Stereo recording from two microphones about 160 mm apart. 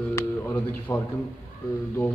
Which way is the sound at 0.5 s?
15° left (ahead or behind).